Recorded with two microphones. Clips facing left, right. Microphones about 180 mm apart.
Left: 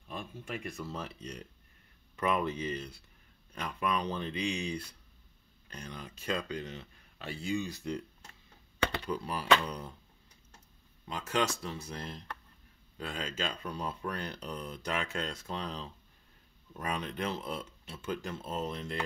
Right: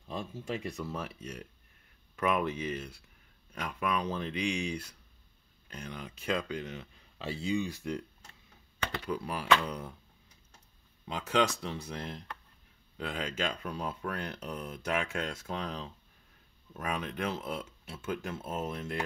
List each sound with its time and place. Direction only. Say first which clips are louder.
0.1 s speech: right 4 dB; 25° right (ahead or behind)
0.8 s speech: right 2 dB; 10° right (ahead or behind)
7.2 s speech: right 2 dB; 20° right (ahead or behind)
9.0 s speech: even; 10° right (ahead or behind)
11.1 s speech: right 3 dB; 15° right (ahead or behind)
12.9 s speech: right 2 dB; 15° right (ahead or behind)